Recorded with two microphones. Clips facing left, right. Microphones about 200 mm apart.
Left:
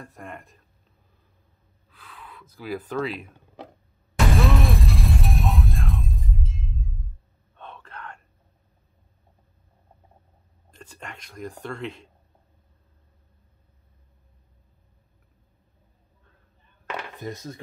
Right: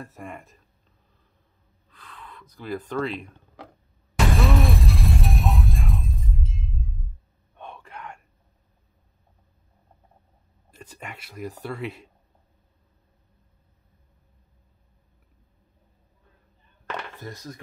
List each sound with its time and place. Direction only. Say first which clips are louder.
0.0 s speech: right 2 dB; centre (ahead or behind)
1.9 s speech: even; 5° left (ahead or behind)
4.4 s music: even; centre (ahead or behind)
7.5 s whispering: right 2 dB; 10° right (ahead or behind)
10.7 s speech: right 1 dB; 10° right (ahead or behind)
17.2 s speech: left 4 dB; 20° left (ahead or behind)